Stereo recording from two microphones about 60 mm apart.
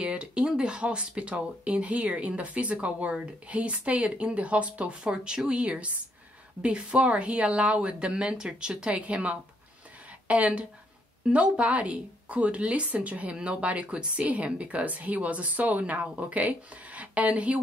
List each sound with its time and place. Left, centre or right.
0.0 s a woman's voice: centre